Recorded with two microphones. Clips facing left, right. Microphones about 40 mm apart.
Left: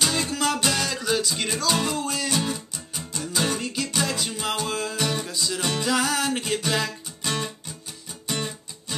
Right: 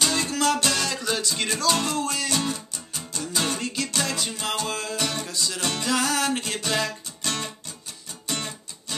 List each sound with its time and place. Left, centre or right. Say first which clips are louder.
0.0 s music: right 1 dB; centre
8.3 s guitar: left 2 dB; centre